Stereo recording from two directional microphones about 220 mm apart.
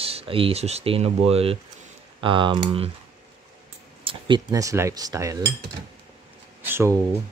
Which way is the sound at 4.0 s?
25° right (ahead or behind).